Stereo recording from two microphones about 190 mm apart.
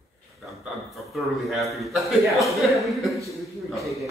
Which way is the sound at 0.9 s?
Centre (ahead or behind).